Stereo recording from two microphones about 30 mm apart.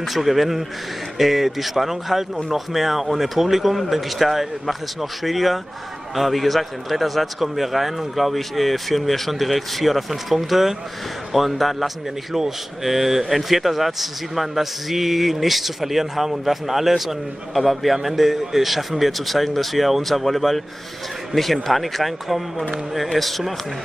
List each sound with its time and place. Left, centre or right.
0.0 s speech: centre
17.9 s speech: centre
21.6 s speech: centre